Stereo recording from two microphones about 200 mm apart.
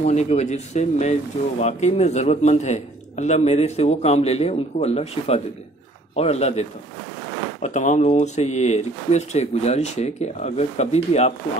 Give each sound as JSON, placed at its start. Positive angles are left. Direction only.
{"t": 0.0, "sound": "a man's voice", "side_deg": 35}
{"t": 7.6, "sound": "a man's voice", "side_deg": 40}